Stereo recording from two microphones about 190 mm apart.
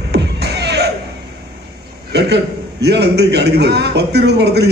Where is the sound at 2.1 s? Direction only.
60° right (ahead or behind).